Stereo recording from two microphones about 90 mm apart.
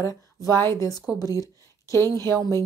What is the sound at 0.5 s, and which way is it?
Speech, 30° left (ahead or behind).